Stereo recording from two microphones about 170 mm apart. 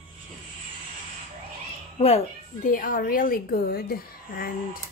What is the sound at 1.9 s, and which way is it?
Speech, 40° left (ahead or behind).